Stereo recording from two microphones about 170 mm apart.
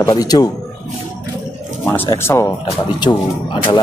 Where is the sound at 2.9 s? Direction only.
25° left (ahead or behind).